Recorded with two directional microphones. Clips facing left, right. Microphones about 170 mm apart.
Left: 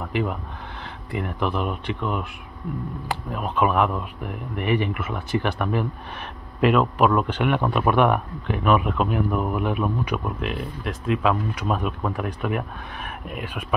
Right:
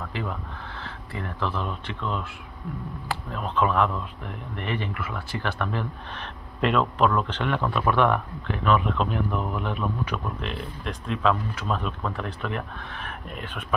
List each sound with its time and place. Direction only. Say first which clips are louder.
0.0 s speech: left 6 dB; 20° left (ahead or behind)